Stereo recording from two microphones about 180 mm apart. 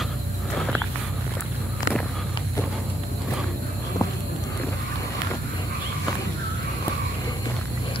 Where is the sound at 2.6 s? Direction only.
15° left (ahead or behind).